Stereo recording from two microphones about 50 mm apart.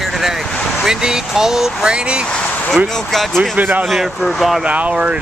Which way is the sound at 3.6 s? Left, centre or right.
Right.